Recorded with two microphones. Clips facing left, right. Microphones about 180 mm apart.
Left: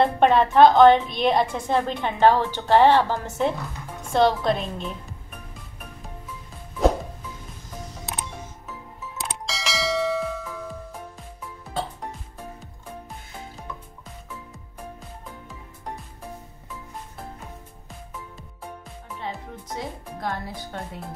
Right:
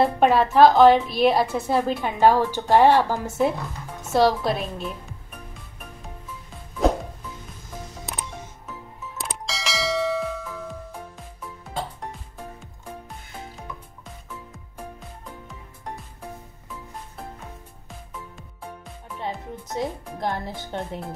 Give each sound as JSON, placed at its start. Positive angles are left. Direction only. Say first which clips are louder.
{"t": 0.0, "sound": "a woman's voice", "louder": "even", "side_deg": -5}
{"t": 6.8, "sound": "music", "louder": "left 1 dB", "side_deg": 0}
{"t": 9.2, "sound": "bell", "louder": "even", "side_deg": 0}
{"t": 19.7, "sound": "music", "louder": "right 5 dB", "side_deg": -20}